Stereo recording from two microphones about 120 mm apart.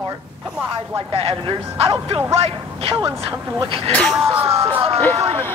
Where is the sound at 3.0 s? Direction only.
30° right (ahead or behind).